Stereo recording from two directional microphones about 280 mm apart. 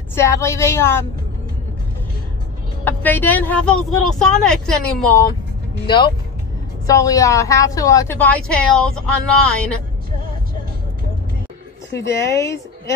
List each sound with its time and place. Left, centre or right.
0.1 s a woman's voice: centre
2.8 s a woman's voice: centre
5.9 s a woman's voice: centre
11.9 s a woman's voice: centre